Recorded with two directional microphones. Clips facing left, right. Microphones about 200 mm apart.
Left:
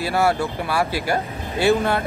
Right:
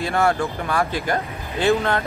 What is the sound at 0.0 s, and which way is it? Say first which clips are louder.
Speech: even; 5° left (ahead or behind).